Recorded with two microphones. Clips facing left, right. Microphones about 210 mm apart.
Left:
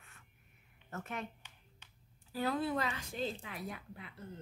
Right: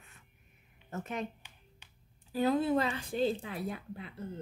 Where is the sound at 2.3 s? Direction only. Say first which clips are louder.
Right 6 dB; 20° right (ahead or behind).